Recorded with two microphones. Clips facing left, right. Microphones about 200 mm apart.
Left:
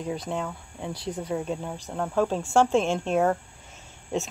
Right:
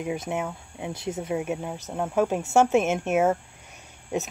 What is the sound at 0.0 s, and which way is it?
Speech, 20° right (ahead or behind).